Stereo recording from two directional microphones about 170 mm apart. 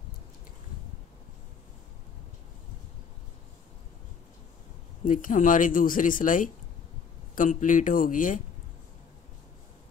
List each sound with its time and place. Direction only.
5.0 s speech: 50° left (ahead or behind)